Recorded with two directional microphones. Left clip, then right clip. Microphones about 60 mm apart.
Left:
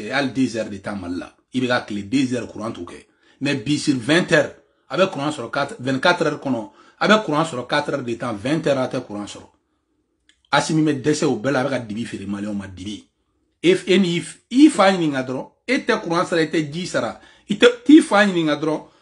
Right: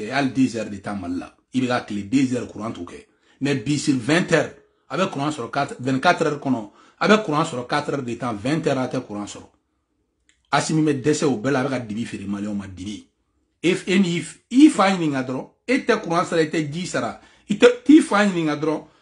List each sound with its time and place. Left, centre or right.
0.0 s a man's voice: right
10.9 s a man's voice: right
18.5 s speech: centre